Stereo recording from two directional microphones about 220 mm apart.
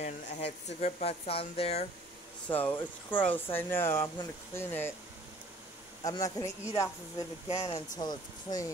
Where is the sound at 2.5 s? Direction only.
10° left (ahead or behind).